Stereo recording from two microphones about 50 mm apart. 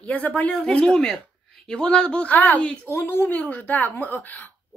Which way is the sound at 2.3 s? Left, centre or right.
Left.